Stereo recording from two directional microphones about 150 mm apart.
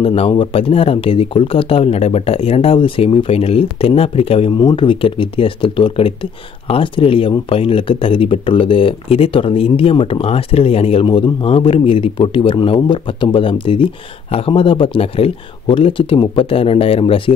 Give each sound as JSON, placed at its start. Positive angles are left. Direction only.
{"t": 0.0, "sound": "speech", "side_deg": 40}